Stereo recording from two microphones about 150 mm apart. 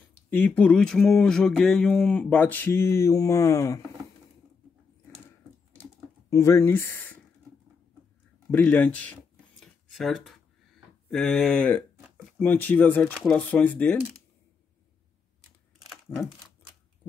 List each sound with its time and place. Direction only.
0.3 s speech: 10° left (ahead or behind)
6.3 s speech: 20° left (ahead or behind)
8.5 s speech: 10° left (ahead or behind)
9.6 s a sound: centre (ahead or behind)
11.1 s speech: 5° left (ahead or behind)
15.9 s crumpling: centre (ahead or behind)